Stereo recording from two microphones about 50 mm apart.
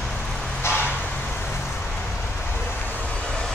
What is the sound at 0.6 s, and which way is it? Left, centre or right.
Vehicle, left.